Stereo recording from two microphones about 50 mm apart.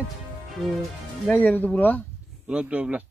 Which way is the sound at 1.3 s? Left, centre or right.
Left.